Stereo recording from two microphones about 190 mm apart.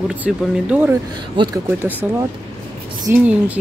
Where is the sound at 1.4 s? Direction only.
25° right (ahead or behind).